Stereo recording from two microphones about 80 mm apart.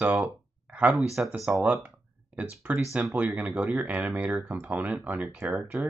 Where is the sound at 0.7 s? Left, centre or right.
Centre.